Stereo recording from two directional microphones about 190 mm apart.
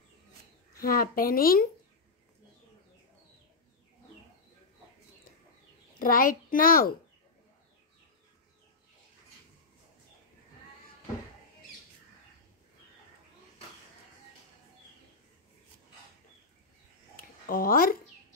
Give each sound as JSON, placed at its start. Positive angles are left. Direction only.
{"t": 0.7, "sound": "speech", "side_deg": 50}
{"t": 5.9, "sound": "a child's voice", "side_deg": 45}
{"t": 17.2, "sound": "a sound", "side_deg": 50}